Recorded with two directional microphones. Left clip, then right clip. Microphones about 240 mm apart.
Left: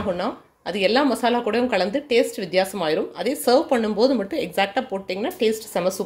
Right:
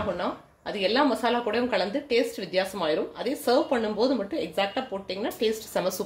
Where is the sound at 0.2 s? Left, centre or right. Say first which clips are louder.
Left 4 dB; left.